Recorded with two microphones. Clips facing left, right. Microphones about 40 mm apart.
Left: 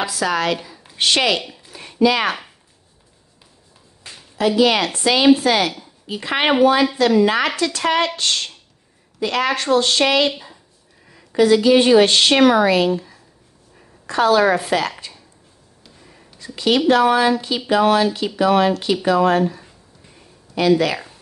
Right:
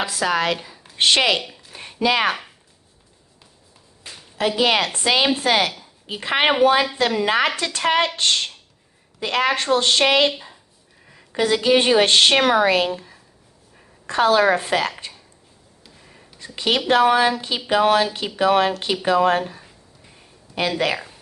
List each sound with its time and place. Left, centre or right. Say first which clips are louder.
0.0 s a woman's voice: left 1 dB; right
1.7 s a sound: left 4 dB; right
4.4 s a woman's voice: left 3 dB; right
11.3 s speech: left 5 dB; right
14.0 s a woman's voice: left 1 dB; right
16.3 s a woman's voice: left 4 dB; right
20.5 s a sound: left 3 dB; centre